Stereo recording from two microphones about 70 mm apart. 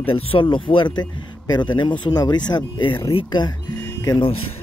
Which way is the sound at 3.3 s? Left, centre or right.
Left.